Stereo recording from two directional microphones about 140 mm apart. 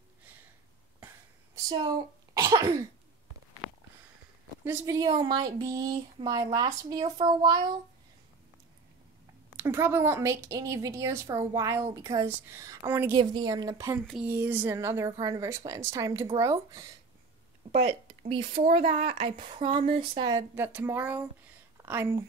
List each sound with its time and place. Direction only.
2.3 s cough: 25° right (ahead or behind)
4.6 s a woman's voice: 25° right (ahead or behind)
9.6 s a woman's voice: 20° right (ahead or behind)
13.1 s a woman's voice: 35° right (ahead or behind)
14.2 s a woman's voice: 15° right (ahead or behind)
17.7 s a woman's voice: 45° right (ahead or behind)
20.5 s speech: 15° right (ahead or behind)